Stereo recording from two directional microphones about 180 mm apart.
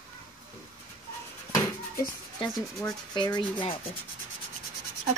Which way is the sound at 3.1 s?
25° left (ahead or behind).